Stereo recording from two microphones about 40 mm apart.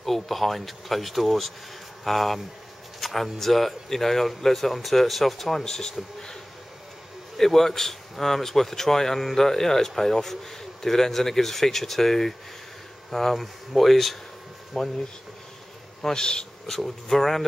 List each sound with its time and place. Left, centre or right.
0.0 s speech: centre
7.3 s speech: centre
14.7 s speech: centre
16.0 s speech: centre